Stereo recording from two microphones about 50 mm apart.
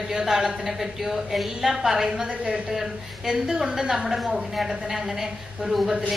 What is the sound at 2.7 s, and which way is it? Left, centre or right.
A woman's voice, centre.